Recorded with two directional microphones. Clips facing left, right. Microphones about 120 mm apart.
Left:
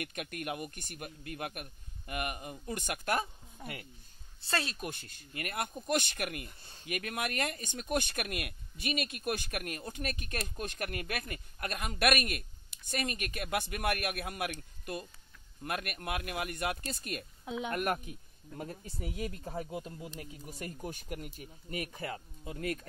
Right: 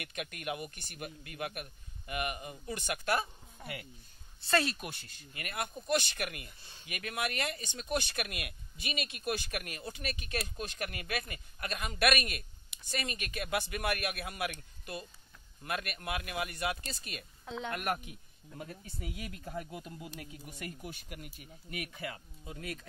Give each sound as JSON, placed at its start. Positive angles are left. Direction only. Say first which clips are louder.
{"t": 0.0, "sound": "speech", "louder": "left 1 dB", "side_deg": 45}
{"t": 4.5, "sound": "speech", "louder": "right 5 dB", "side_deg": 25}
{"t": 4.8, "sound": "speech", "louder": "left 3 dB", "side_deg": 45}
{"t": 15.6, "sound": "speech", "louder": "left 1 dB", "side_deg": 50}
{"t": 17.5, "sound": "speech", "louder": "left 3 dB", "side_deg": 10}
{"t": 18.6, "sound": "speech", "louder": "left 3 dB", "side_deg": 35}
{"t": 22.4, "sound": "speech", "louder": "left 6 dB", "side_deg": 50}